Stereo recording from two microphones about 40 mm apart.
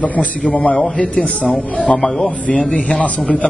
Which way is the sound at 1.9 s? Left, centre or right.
Centre.